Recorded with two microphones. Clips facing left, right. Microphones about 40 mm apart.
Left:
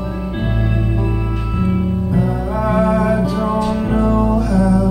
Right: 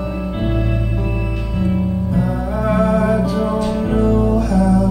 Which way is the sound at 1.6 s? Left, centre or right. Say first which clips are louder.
Even; centre.